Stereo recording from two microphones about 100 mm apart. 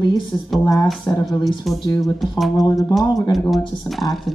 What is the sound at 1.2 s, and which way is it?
Speech, 40° left (ahead or behind).